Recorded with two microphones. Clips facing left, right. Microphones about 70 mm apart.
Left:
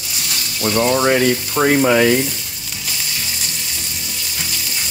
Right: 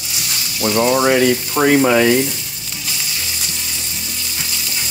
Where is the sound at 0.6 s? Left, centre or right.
Centre.